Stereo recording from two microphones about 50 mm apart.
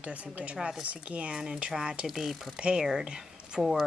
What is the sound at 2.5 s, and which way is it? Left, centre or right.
Speech, centre.